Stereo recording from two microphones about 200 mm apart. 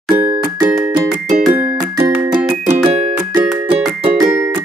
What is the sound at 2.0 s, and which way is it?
Music, 20° right (ahead or behind).